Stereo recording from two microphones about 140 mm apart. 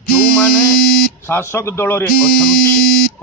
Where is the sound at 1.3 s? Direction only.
15° left (ahead or behind).